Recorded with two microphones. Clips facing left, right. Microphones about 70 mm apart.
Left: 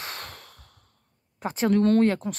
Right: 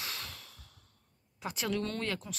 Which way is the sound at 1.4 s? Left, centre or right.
Left.